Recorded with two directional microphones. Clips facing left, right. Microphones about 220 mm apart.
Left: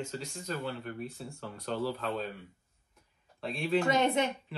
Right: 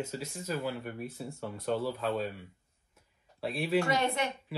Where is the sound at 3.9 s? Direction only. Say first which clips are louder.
Left 3 dB; 20° left (ahead or behind).